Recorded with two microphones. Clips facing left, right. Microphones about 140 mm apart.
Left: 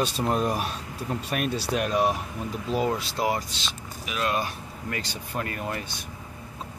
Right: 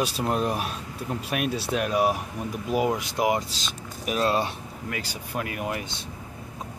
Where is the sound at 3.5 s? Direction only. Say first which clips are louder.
Even; 40° right (ahead or behind).